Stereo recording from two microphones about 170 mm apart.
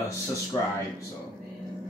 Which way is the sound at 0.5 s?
20° left (ahead or behind).